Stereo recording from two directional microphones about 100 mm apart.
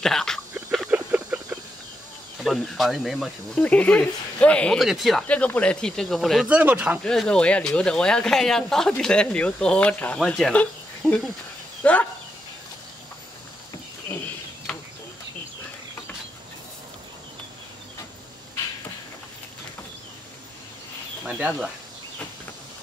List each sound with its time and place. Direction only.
0.0 s speech: 5° left (ahead or behind)
0.8 s a sound: 15° right (ahead or behind)
2.4 s speech: centre (ahead or behind)
3.6 s speech: 10° left (ahead or behind)
4.8 s speech: centre (ahead or behind)
5.3 s speech: 15° left (ahead or behind)
6.4 s speech: 15° right (ahead or behind)
7.0 s speech: 5° left (ahead or behind)
10.1 s speech: 5° left (ahead or behind)
11.8 s speech: 15° left (ahead or behind)
21.3 s speech: 10° right (ahead or behind)